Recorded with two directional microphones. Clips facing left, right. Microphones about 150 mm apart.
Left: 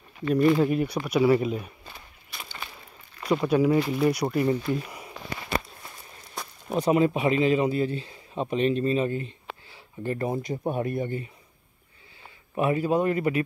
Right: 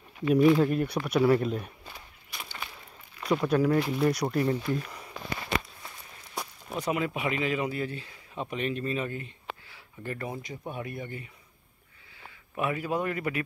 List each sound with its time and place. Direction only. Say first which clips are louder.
0.2 s speech: even; 5° right (ahead or behind)
1.9 s a sound: left 1 dB; 10° right (ahead or behind)
3.2 s speech: left 3 dB; 5° left (ahead or behind)
6.4 s a sound: right 1 dB; 10° right (ahead or behind)
6.7 s speech: left 8 dB; 30° left (ahead or behind)
12.5 s speech: left 6 dB; 30° left (ahead or behind)